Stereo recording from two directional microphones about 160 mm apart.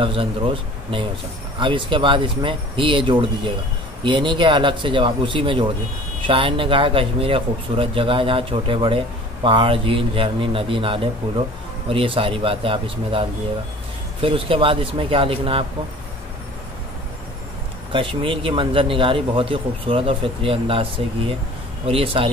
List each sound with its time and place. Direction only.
0.0 s speech: 35° right (ahead or behind)
17.9 s speech: 35° right (ahead or behind)